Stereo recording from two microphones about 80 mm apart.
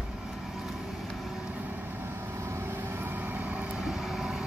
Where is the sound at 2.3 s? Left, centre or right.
Right; by 3.8 s centre.